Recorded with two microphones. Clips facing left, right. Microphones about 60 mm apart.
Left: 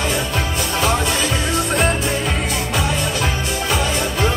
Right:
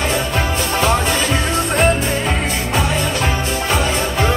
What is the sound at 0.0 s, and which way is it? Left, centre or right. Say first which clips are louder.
Music: right 2 dB; right.